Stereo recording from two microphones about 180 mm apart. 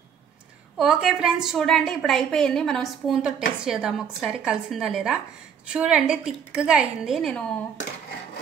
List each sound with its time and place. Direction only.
0.7 s a woman's voice: 5° right (ahead or behind)